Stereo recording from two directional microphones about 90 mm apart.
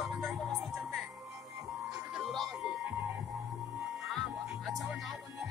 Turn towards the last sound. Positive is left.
turn(degrees=0)  # may be behind; listen again after turning